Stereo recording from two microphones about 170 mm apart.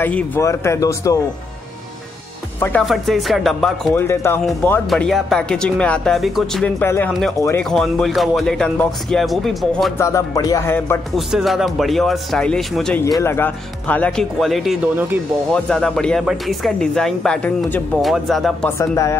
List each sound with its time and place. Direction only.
0.0 s speech: 10° left (ahead or behind)
2.8 s speech: centre (ahead or behind)
3.9 s speech: 15° left (ahead or behind)
7.3 s speech: 15° left (ahead or behind)
7.6 s speech: centre (ahead or behind)
9.9 s speech: 20° left (ahead or behind)
11.1 s speech: centre (ahead or behind)
13.2 s speech: 15° left (ahead or behind)
18.7 s speech: 15° left (ahead or behind)